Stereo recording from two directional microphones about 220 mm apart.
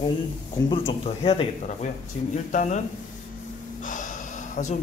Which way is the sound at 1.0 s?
25° left (ahead or behind).